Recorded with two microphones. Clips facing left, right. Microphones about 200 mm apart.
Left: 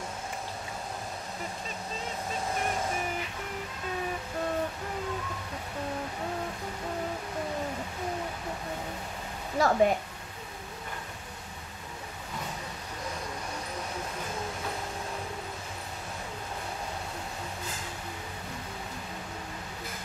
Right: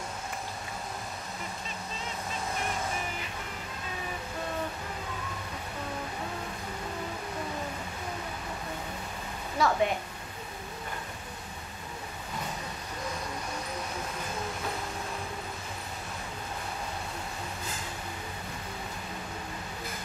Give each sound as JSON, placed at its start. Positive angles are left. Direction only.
{"t": 9.6, "sound": "speech", "side_deg": 40}